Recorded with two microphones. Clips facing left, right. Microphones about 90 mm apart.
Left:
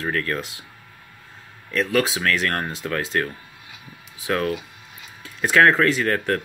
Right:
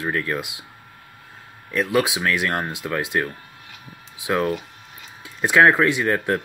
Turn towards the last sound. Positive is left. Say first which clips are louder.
# right 1 dB
turn(degrees=-15)  # may be behind; listen again after turning